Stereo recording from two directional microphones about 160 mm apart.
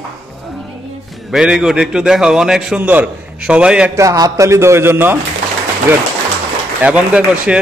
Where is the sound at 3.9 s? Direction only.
20° right (ahead or behind).